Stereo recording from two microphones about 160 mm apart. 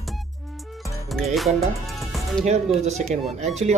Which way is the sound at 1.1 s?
Centre (ahead or behind).